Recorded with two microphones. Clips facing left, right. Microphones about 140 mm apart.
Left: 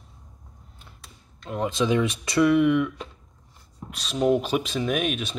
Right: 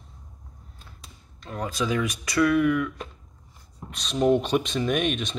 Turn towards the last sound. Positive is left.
turn(degrees=5)  # may be behind; listen again after turning